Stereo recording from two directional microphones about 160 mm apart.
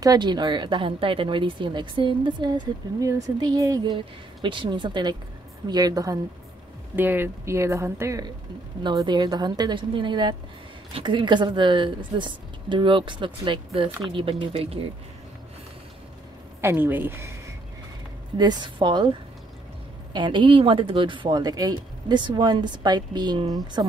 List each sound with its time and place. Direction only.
0.0 s speech: 25° right (ahead or behind)
16.6 s speech: 10° right (ahead or behind)
18.4 s speech: 25° right (ahead or behind)